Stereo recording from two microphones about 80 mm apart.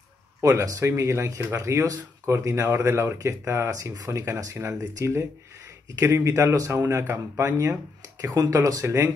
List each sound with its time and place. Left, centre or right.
0.4 s speech: right